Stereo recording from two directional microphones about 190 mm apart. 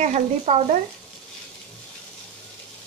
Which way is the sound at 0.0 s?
35° right (ahead or behind).